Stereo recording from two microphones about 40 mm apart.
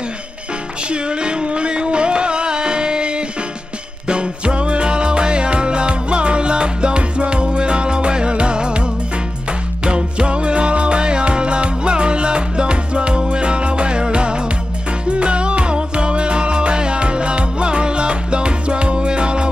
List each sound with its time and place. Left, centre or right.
0.8 s music: right
9.8 s music: right